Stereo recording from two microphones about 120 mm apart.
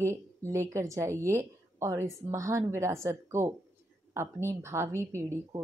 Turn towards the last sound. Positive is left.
turn(degrees=-25)  # may be behind; listen again after turning